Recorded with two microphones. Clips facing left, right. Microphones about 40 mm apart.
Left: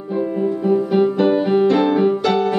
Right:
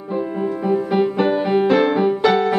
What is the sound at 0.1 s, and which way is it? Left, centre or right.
Music, centre.